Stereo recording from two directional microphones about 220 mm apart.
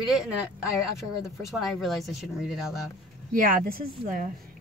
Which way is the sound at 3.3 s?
40° right (ahead or behind).